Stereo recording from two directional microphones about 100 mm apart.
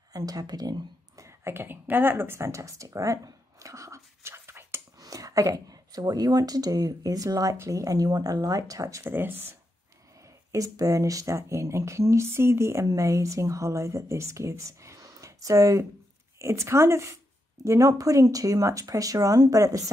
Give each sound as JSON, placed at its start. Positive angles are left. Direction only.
{"t": 0.1, "sound": "speech", "side_deg": -40}
{"t": 5.0, "sound": "speech", "side_deg": -35}
{"t": 9.0, "sound": "a woman's voice", "side_deg": -20}
{"t": 10.5, "sound": "a woman's voice", "side_deg": -35}